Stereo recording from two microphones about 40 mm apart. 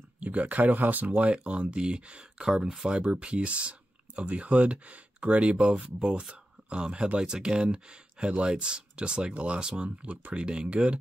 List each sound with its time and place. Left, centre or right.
0.2 s speech: right; by 2.9 s centre
2.9 s speech: right